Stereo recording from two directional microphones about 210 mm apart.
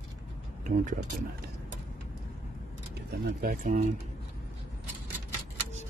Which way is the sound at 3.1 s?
50° right (ahead or behind).